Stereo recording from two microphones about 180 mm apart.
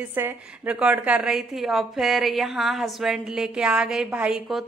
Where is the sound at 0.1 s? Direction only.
10° right (ahead or behind).